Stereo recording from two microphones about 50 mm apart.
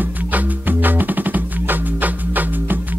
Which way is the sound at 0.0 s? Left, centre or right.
Right.